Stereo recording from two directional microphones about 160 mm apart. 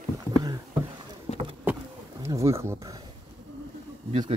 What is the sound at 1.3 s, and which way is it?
Vehicle, 45° left (ahead or behind).